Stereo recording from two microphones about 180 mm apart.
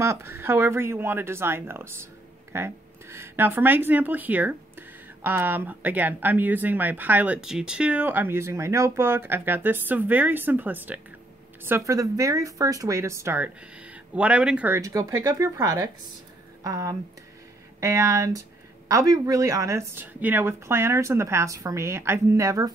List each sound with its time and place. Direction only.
0.0 s speech: 15° right (ahead or behind)